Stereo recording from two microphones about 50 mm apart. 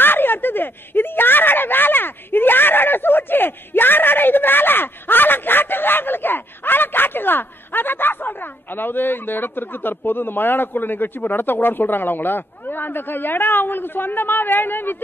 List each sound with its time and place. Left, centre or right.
0.0 s speech: left